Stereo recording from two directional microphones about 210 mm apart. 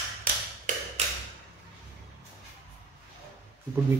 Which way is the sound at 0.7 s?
40° right (ahead or behind).